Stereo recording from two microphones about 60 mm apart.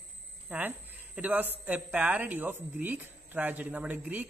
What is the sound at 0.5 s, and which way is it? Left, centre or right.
Speech, right.